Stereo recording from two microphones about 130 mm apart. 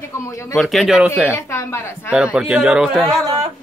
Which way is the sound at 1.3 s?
20° left (ahead or behind).